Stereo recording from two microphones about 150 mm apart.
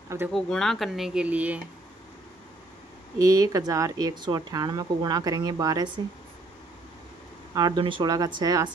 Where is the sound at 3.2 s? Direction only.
20° right (ahead or behind).